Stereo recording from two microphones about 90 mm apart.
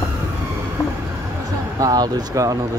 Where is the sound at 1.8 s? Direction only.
45° right (ahead or behind).